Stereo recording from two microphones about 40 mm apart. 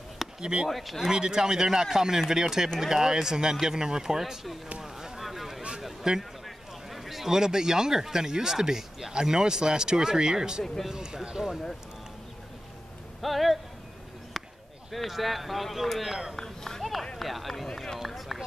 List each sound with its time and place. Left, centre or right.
0.4 s speech: right
0.7 s speech: centre
4.2 s speech: centre
4.8 s a sound: centre
6.0 s speech: centre
6.4 s a sound: centre
7.3 s speech: centre
13.2 s speech: centre
14.3 s a sound: centre
14.9 s speech: centre
16.3 s speech: centre
17.2 s speech: centre
17.6 s speech: centre
17.9 s speech: centre